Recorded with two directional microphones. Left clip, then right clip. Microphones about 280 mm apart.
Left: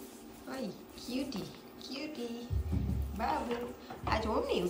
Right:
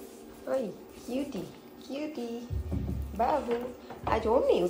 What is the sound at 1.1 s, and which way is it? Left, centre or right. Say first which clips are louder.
A woman's voice: right 4 dB; centre.